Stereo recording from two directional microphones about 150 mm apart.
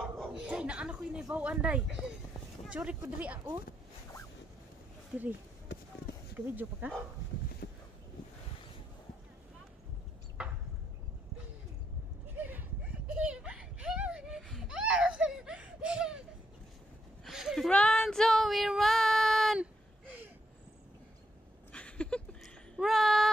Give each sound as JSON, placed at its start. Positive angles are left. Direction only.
{"t": 0.0, "sound": "chuckle", "side_deg": 0}
{"t": 0.5, "sound": "a woman's voice", "side_deg": -5}
{"t": 5.1, "sound": "speech", "side_deg": -5}
{"t": 6.3, "sound": "speech", "side_deg": -10}
{"t": 7.6, "sound": "a sound", "side_deg": 90}
{"t": 12.4, "sound": "a sound", "side_deg": -10}
{"t": 13.1, "sound": "whimper", "side_deg": -10}
{"t": 17.2, "sound": "female singing", "side_deg": 0}
{"t": 21.7, "sound": "a sound", "side_deg": 5}